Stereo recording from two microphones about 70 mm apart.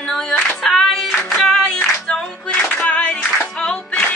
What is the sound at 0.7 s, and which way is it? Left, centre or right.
Music, centre.